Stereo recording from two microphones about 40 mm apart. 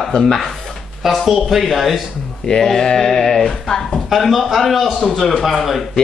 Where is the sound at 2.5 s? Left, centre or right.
Centre.